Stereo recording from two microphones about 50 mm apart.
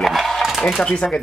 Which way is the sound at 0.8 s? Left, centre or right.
Centre.